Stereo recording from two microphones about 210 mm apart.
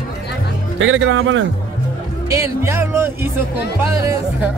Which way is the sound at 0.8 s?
65° right (ahead or behind).